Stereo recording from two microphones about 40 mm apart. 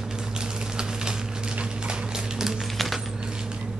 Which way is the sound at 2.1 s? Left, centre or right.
Centre.